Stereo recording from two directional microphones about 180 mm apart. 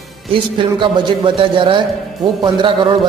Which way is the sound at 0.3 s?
25° right (ahead or behind).